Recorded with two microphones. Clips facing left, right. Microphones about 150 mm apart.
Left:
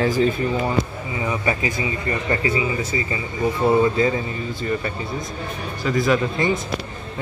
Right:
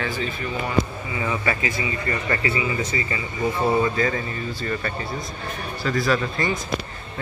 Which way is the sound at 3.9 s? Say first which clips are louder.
Left 3 dB; 20° left (ahead or behind).